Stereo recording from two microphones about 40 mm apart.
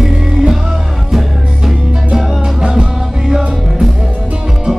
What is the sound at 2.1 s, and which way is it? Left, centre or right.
Music, right.